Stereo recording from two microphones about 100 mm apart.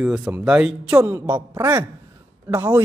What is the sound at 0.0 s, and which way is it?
Speech, 5° right (ahead or behind).